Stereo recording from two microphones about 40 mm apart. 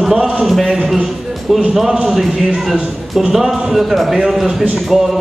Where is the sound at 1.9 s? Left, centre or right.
Right.